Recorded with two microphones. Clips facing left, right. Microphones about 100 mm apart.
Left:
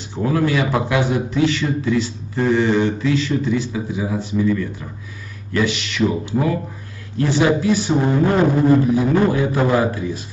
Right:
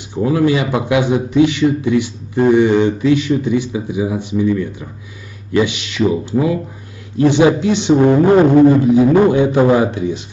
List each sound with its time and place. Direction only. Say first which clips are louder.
0.1 s a man's voice: right 4 dB; 15° right (ahead or behind)